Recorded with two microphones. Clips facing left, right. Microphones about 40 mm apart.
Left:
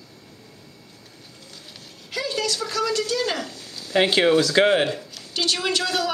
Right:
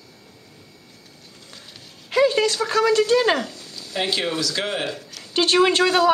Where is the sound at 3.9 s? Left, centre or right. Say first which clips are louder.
Left 6 dB; left.